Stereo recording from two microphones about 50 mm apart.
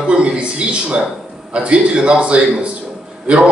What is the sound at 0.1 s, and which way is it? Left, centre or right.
A man's voice, right.